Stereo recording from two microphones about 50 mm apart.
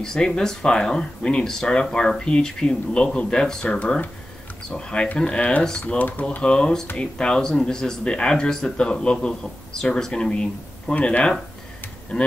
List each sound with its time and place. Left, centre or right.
0.0 s speech: centre
5.9 s speech: left
6.4 s speech: centre